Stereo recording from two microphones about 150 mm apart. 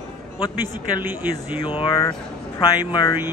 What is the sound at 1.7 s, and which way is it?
Speech, 35° left (ahead or behind).